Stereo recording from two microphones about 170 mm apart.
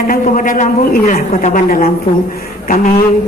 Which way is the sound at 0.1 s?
50° left (ahead or behind).